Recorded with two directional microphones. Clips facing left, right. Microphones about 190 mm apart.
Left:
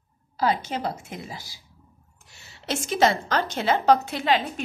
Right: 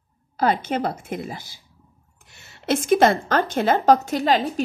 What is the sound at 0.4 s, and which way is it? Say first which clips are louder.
A woman's voice: right 4 dB; 55° right (ahead or behind).